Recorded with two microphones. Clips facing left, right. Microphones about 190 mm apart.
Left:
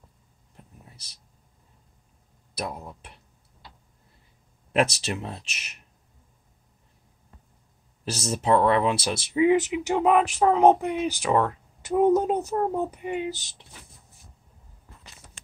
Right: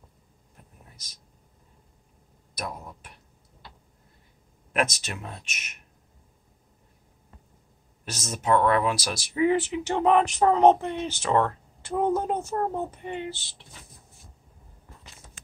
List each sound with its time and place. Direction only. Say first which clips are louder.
2.5 s speech: left 3 dB; 25° left (ahead or behind)
4.7 s speech: left 4 dB; 30° left (ahead or behind)
8.0 s speech: left 5 dB; 30° left (ahead or behind); by 13.6 s 15° left (ahead or behind)